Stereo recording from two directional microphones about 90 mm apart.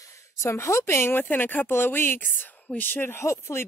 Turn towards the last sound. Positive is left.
turn(degrees=30)  # may be behind; listen again after turning